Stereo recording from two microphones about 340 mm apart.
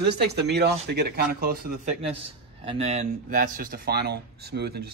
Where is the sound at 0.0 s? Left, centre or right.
Right.